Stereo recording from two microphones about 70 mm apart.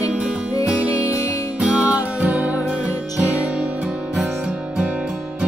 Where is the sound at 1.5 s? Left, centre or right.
Right.